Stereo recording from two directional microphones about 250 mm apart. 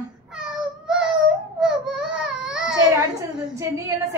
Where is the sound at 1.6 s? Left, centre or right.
Centre.